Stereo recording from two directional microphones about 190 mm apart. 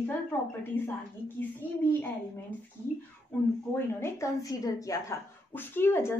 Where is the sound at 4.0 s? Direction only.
15° left (ahead or behind).